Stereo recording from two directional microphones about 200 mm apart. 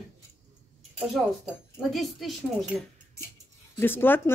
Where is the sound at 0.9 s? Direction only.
Centre (ahead or behind).